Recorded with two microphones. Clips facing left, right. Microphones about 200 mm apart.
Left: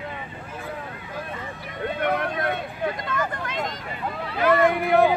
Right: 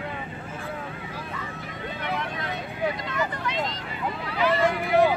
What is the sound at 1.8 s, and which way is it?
Vehicle, 55° left (ahead or behind).